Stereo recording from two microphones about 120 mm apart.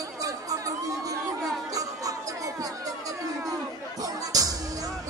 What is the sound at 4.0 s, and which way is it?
Music, 30° right (ahead or behind).